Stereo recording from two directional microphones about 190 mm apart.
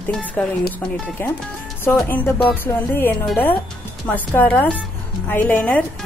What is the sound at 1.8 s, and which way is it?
Speech, 10° left (ahead or behind).